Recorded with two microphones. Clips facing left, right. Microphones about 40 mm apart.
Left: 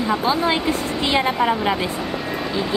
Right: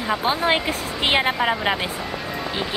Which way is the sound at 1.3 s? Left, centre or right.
Centre.